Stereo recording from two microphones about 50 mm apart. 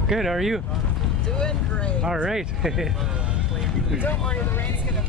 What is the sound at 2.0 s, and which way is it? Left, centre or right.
Speech, centre.